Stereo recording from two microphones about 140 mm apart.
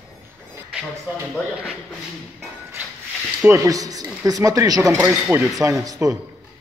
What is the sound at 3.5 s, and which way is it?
Speech, 25° right (ahead or behind).